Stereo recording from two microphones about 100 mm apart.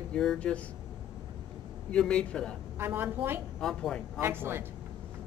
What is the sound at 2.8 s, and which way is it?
Speech, 20° right (ahead or behind).